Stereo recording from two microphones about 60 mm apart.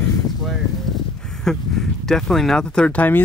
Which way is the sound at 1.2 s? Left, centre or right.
Centre.